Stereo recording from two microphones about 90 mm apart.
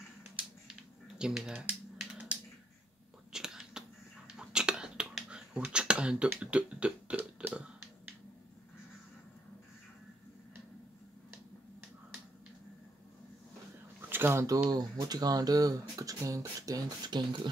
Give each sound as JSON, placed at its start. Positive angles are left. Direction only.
{"t": 1.1, "sound": "speech", "side_deg": -5}
{"t": 3.3, "sound": "whispering", "side_deg": -5}
{"t": 14.0, "sound": "a sound", "side_deg": -25}
{"t": 14.7, "sound": "speech", "side_deg": -45}